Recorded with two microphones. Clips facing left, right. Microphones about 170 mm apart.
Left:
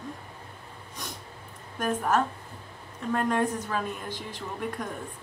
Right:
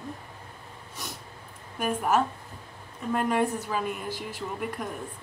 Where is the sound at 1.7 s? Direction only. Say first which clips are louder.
Right 1 dB; 10° right (ahead or behind).